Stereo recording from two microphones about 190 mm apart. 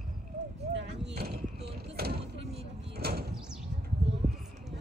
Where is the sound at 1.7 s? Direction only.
55° right (ahead or behind).